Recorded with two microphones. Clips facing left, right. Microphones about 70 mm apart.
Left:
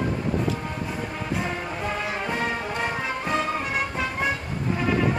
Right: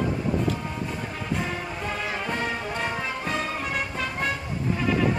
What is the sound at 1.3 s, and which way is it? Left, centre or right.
Music, centre.